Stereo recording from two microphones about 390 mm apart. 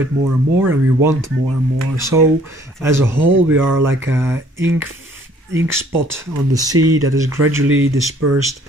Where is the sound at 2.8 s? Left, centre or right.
Centre.